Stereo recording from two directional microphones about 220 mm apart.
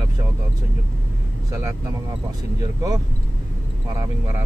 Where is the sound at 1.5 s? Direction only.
15° right (ahead or behind).